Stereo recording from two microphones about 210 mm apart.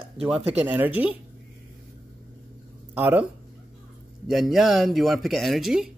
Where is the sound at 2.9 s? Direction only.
10° right (ahead or behind).